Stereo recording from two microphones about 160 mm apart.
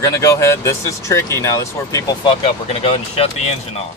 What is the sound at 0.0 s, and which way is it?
Speech, 20° left (ahead or behind).